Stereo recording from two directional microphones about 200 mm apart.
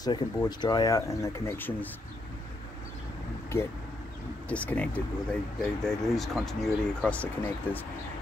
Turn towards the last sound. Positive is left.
turn(degrees=10)  # may be behind; listen again after turning